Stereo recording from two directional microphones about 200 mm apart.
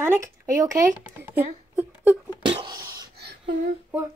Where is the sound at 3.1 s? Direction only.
55° right (ahead or behind).